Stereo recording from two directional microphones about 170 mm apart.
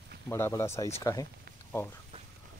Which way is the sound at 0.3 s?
15° left (ahead or behind).